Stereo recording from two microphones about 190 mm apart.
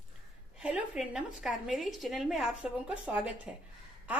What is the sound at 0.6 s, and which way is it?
A woman's voice, 5° right (ahead or behind).